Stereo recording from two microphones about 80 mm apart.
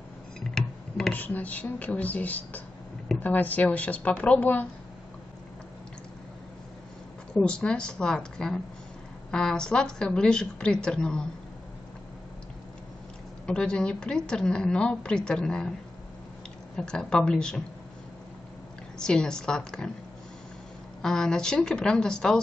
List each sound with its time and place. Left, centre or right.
0.4 s tick-tock: centre
1.1 s a woman's voice: centre
7.3 s a woman's voice: centre
13.5 s a woman's voice: centre
16.7 s a woman's voice: centre
18.9 s a woman's voice: centre
21.0 s a woman's voice: centre